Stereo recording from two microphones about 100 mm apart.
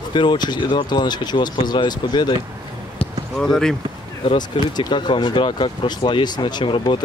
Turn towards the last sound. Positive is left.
turn(degrees=55)  # may be behind; listen again after turning